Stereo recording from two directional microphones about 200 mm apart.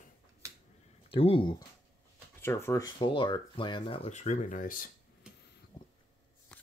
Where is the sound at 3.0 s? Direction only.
25° left (ahead or behind); by 4.9 s 45° left (ahead or behind).